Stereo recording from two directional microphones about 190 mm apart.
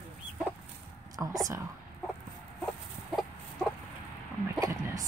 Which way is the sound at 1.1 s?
20° right (ahead or behind).